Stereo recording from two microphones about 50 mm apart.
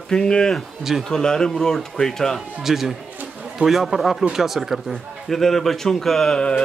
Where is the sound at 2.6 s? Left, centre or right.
Centre.